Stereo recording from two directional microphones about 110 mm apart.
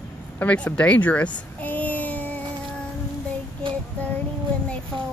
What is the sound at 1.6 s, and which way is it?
Child singing, 15° left (ahead or behind).